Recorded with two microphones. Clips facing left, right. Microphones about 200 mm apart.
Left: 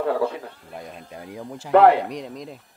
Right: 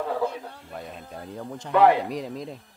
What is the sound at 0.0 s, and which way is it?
Speech, 65° left (ahead or behind).